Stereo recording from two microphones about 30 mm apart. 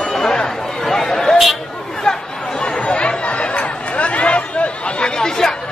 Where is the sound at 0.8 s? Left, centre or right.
Centre.